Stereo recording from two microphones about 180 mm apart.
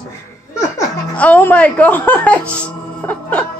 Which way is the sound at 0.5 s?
15° left (ahead or behind).